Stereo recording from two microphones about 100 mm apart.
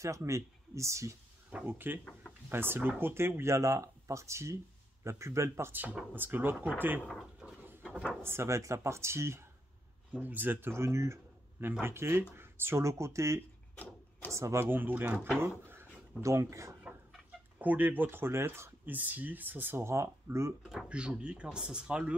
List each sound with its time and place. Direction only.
0.0 s speech: 30° right (ahead or behind)
1.5 s speech: 15° right (ahead or behind)
7.4 s a sound: 20° right (ahead or behind)
8.2 s speech: 25° right (ahead or behind)
16.8 s speech: 15° right (ahead or behind)
20.7 s speech: 10° right (ahead or behind)